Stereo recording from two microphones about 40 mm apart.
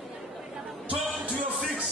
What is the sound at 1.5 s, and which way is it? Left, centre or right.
Music, centre.